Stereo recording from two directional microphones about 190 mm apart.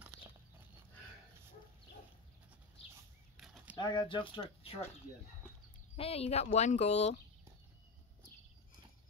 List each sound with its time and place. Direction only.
3.3 s a sound: centre (ahead or behind)
3.7 s speech: 25° left (ahead or behind)
5.9 s speech: 30° left (ahead or behind)